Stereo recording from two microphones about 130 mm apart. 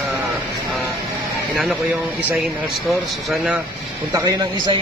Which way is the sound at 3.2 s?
5° right (ahead or behind).